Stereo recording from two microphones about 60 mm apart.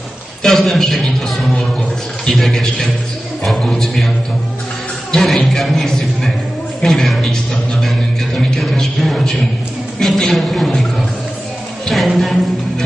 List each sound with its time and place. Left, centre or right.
0.4 s a man's voice: centre
5.1 s a man's voice: centre
8.4 s a sound: centre
9.9 s a woman's voice: centre
11.9 s speech: centre